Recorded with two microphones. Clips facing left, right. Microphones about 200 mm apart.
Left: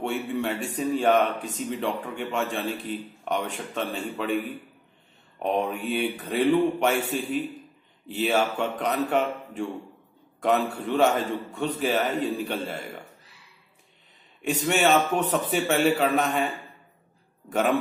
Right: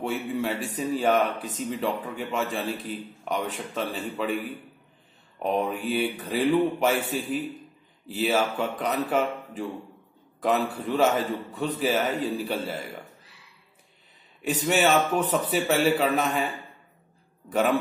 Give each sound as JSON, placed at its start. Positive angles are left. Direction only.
{"t": 0.0, "sound": "a man's voice", "side_deg": 0}
{"t": 5.4, "sound": "a man's voice", "side_deg": 0}
{"t": 14.6, "sound": "a man's voice", "side_deg": 0}
{"t": 17.5, "sound": "a man's voice", "side_deg": 0}